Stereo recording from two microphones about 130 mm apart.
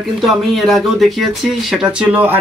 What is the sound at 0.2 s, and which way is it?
Speech, centre (ahead or behind).